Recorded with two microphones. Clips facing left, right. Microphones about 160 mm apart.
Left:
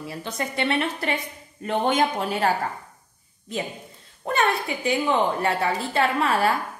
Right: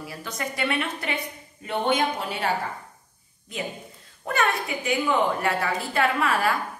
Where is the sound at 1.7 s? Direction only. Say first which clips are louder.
Left 2 dB; 45° left (ahead or behind).